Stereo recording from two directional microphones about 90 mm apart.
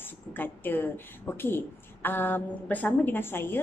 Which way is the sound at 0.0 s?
20° left (ahead or behind).